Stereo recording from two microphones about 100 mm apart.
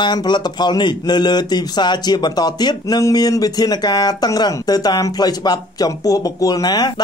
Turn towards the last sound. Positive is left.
turn(degrees=40)  # may be behind; listen again after turning